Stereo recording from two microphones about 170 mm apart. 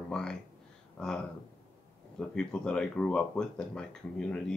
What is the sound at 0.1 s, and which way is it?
Speech, 5° left (ahead or behind).